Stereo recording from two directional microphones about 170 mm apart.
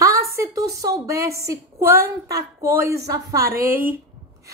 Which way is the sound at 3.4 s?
60° right (ahead or behind).